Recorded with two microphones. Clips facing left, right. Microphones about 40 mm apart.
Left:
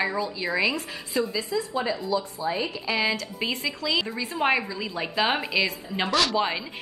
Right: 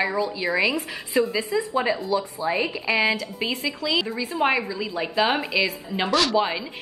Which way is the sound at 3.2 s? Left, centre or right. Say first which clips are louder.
Right 2 dB; centre.